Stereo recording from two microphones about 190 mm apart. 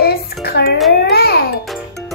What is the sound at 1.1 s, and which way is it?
Music, 55° left (ahead or behind).